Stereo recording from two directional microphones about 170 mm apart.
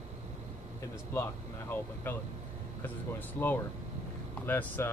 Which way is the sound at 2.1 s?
10° left (ahead or behind).